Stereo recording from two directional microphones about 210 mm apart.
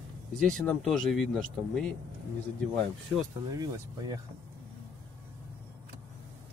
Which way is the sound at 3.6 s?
15° right (ahead or behind).